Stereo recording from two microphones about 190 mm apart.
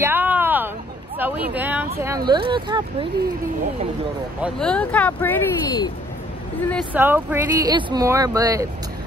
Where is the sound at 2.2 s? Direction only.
25° right (ahead or behind).